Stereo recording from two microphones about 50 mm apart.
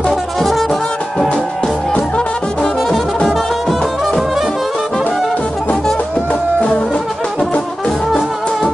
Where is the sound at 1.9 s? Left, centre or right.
Left.